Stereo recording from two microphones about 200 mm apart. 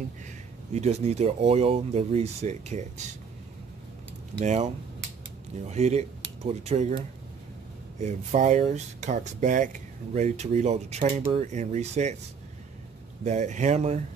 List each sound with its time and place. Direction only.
0.7 s speech: 35° right (ahead or behind)
4.4 s speech: 35° right (ahead or behind)
8.0 s speech: 35° right (ahead or behind)
13.2 s speech: 35° right (ahead or behind)